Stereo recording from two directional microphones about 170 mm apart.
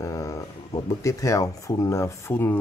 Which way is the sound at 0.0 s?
20° left (ahead or behind).